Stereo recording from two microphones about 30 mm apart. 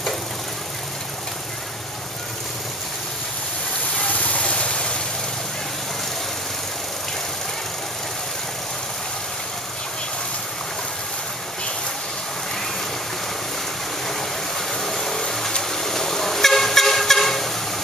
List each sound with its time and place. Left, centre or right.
4.1 s a sound: left
4.4 s vehicle: left
14.7 s vehicle: centre